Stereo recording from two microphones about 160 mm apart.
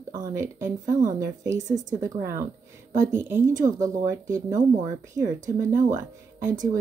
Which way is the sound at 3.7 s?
20° right (ahead or behind).